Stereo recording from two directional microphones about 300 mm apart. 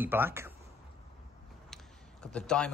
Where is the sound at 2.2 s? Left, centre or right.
Centre.